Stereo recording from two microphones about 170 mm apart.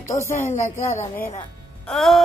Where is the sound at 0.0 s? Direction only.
15° left (ahead or behind).